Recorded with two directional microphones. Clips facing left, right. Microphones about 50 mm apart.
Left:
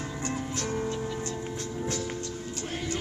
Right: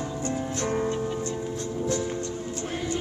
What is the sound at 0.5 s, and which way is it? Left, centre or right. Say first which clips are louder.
Music: right 6 dB; right.